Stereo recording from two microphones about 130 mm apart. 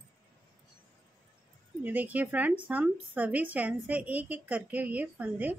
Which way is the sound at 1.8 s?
10° right (ahead or behind).